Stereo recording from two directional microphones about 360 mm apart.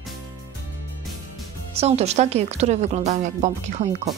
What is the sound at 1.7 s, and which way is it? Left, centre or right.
A woman's voice, centre.